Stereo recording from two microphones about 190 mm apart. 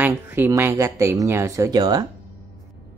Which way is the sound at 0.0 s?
10° right (ahead or behind).